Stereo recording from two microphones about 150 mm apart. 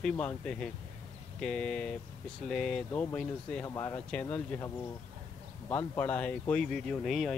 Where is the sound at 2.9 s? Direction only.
15° left (ahead or behind); by 7.3 s centre (ahead or behind).